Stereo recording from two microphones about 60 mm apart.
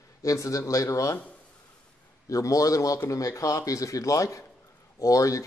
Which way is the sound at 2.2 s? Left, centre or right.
Left.